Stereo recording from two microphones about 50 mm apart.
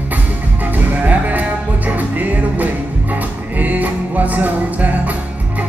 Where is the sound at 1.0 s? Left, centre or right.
Right.